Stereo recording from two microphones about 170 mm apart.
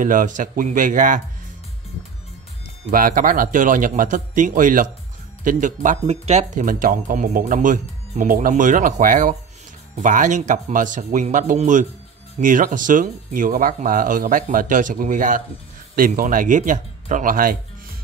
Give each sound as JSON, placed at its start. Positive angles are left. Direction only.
{"t": 0.0, "sound": "speech", "side_deg": -50}
{"t": 2.9, "sound": "speech", "side_deg": -55}